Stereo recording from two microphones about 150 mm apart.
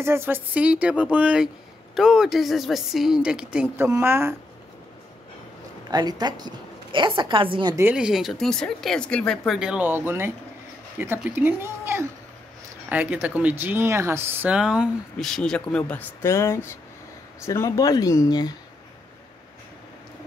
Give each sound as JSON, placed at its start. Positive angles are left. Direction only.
{"t": 0.0, "sound": "a woman's voice", "side_deg": -15}
{"t": 5.9, "sound": "a woman's voice", "side_deg": -25}
{"t": 7.9, "sound": "a woman's voice", "side_deg": -5}